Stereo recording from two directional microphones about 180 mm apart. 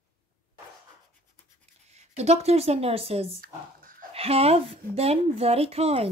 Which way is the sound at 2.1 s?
35° right (ahead or behind).